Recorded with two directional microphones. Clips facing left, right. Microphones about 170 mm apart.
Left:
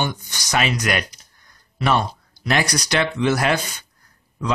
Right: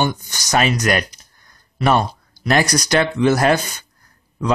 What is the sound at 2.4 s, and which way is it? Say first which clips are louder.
Speech: right 4 dB; 45° right (ahead or behind).